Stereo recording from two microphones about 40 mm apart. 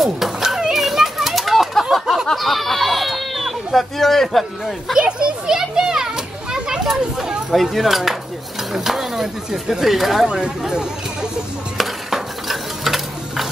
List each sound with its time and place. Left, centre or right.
0.0 s dog: centre
0.8 s a sound: centre
2.3 s speech: centre
4.9 s a child's voice: right
5.6 s children playing: centre
7.5 s speech: centre
10.2 s speech: centre
11.8 s a sound: centre